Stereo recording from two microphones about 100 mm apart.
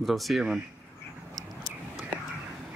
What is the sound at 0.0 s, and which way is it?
Speech, centre (ahead or behind).